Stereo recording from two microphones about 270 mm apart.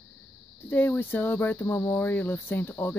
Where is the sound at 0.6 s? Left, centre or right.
Centre.